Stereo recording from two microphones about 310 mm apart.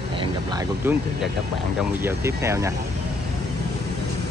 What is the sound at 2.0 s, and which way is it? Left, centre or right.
Speech, centre.